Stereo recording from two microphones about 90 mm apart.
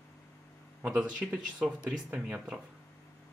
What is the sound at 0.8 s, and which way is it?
Speech, 15° right (ahead or behind).